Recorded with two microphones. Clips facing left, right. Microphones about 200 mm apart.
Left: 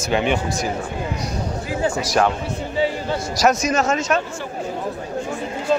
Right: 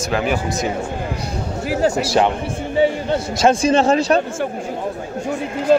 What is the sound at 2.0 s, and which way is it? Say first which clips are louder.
A man's voice: right 2 dB; 25° right (ahead or behind).